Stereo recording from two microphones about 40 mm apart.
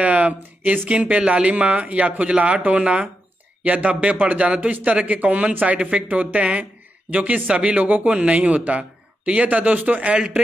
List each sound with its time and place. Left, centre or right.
0.0 s speech: right
5.5 s a man's voice: right
5.8 s speech: right
6.0 s speech: right
10.1 s speech: right